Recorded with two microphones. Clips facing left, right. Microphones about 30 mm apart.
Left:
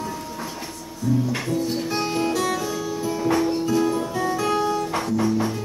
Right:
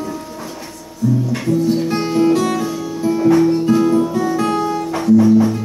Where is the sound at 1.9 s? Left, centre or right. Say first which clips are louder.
Right 8 dB; centre.